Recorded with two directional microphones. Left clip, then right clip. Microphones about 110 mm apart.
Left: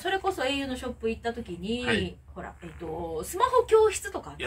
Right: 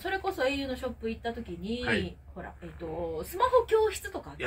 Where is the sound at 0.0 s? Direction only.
20° right (ahead or behind).